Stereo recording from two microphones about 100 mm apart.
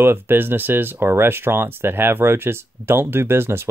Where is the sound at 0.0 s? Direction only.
20° right (ahead or behind).